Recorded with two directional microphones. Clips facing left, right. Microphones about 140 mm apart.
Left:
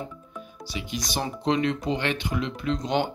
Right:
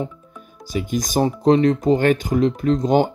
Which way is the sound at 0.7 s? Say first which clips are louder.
Right 10 dB; 45° right (ahead or behind).